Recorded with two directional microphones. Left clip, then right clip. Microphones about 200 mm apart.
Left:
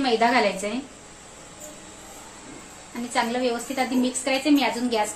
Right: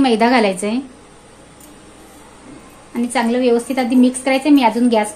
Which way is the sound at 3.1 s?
50° right (ahead or behind).